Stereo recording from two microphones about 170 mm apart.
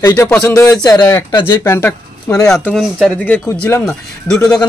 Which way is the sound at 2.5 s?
Centre (ahead or behind).